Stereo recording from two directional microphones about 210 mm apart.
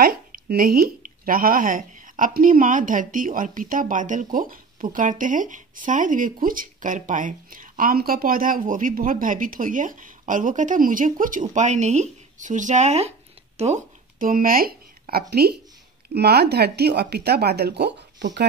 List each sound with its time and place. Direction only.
0.0 s speech: 45° right (ahead or behind)